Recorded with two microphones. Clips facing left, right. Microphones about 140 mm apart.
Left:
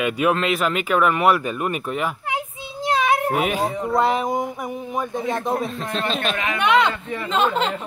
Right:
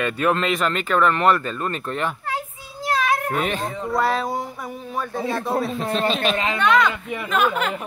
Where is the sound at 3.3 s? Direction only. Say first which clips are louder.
Left 3 dB; 10° left (ahead or behind).